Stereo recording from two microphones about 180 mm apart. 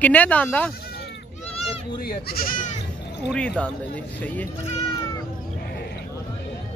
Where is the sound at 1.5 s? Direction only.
30° left (ahead or behind).